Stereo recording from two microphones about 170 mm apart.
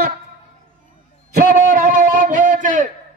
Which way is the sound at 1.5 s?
55° right (ahead or behind).